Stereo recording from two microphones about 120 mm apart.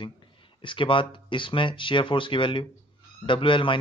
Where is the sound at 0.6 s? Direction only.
45° left (ahead or behind).